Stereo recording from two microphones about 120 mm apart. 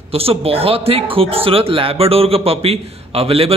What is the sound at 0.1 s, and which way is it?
Speech, 55° right (ahead or behind).